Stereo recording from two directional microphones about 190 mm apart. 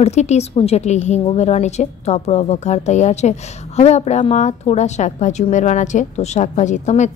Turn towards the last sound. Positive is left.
turn(degrees=35)  # may be behind; listen again after turning